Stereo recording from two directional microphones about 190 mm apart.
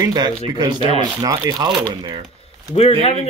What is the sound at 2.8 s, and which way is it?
Speech, 30° left (ahead or behind).